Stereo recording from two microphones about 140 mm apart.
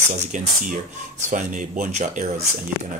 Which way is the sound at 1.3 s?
65° right (ahead or behind).